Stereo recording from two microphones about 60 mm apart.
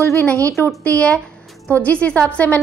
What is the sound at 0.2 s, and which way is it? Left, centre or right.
A woman's voice, left.